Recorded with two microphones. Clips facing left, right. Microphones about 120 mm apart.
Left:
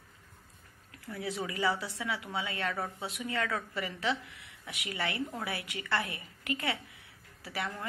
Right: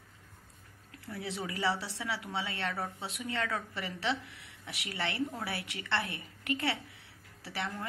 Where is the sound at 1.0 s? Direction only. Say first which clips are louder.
Left 2 dB; 30° right (ahead or behind).